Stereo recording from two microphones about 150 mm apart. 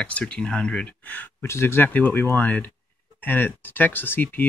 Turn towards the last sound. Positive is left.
turn(degrees=15)  # may be behind; listen again after turning